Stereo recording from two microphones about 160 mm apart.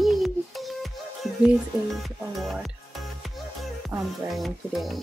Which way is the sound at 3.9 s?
15° right (ahead or behind).